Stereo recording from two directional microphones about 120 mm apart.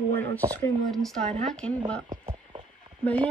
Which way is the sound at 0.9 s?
5° left (ahead or behind).